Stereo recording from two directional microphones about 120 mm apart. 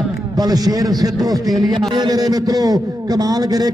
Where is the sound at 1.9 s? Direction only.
35° right (ahead or behind).